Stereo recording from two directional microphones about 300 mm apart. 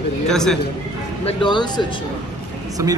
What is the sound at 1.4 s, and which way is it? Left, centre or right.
Speech, centre.